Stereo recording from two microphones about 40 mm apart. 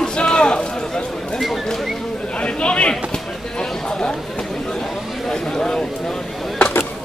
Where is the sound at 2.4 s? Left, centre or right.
Left.